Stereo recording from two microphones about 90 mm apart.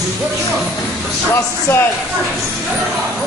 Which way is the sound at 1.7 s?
25° left (ahead or behind).